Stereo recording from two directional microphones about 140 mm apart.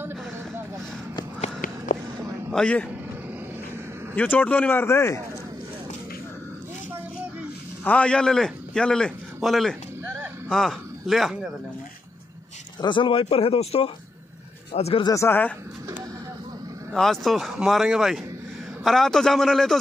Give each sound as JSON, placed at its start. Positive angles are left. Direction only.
{"t": 2.5, "sound": "speech", "side_deg": 10}
{"t": 4.1, "sound": "speech", "side_deg": 10}
{"t": 7.8, "sound": "a man's voice", "side_deg": 10}
{"t": 10.2, "sound": "a sound", "side_deg": 0}
{"t": 12.8, "sound": "speech", "side_deg": 35}
{"t": 15.0, "sound": "speech", "side_deg": 20}
{"t": 16.9, "sound": "speech", "side_deg": 0}